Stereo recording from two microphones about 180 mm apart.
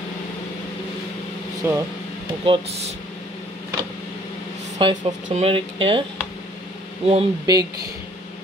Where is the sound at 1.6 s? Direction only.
15° right (ahead or behind).